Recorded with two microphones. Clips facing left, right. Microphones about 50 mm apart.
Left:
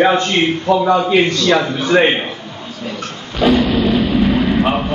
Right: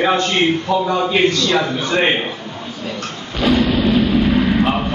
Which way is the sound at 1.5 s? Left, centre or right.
Centre.